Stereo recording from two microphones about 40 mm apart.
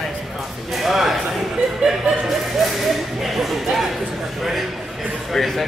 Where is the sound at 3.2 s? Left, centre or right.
Centre.